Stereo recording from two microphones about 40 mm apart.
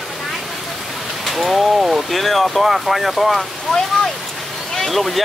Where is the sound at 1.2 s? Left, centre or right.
Centre.